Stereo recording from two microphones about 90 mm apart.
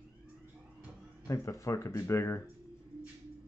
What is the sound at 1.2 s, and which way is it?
Speech, 35° left (ahead or behind).